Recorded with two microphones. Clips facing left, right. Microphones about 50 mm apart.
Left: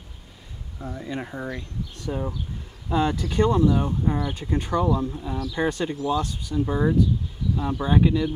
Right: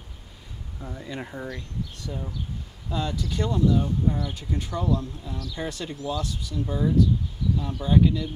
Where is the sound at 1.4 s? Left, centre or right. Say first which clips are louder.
Left 2 dB; left.